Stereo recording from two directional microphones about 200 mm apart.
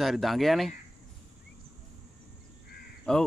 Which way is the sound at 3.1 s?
5° left (ahead or behind).